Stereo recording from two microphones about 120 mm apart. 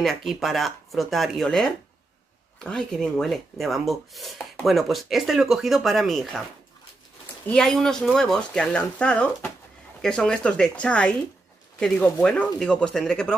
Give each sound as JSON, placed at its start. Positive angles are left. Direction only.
{"t": 0.0, "sound": "speech", "side_deg": 0}
{"t": 7.4, "sound": "speech", "side_deg": 5}